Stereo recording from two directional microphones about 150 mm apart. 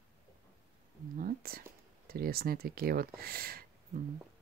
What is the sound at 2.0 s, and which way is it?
Speech, 90° right.